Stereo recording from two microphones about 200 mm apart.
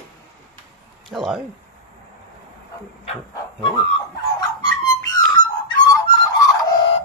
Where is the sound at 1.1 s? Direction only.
Centre (ahead or behind).